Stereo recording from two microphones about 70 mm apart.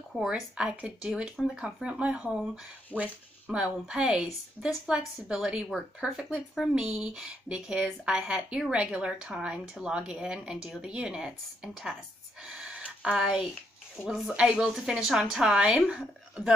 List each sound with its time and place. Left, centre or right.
0.3 s a woman's voice: centre
6.7 s a woman's voice: centre
12.4 s a sound: centre
14.0 s a woman's voice: centre